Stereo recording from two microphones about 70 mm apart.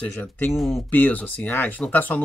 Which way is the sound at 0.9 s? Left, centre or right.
Left.